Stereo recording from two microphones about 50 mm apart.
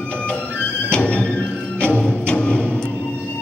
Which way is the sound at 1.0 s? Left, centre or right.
Left.